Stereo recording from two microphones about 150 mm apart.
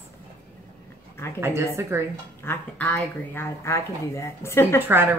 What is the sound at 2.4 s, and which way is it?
A woman's voice, 10° left (ahead or behind).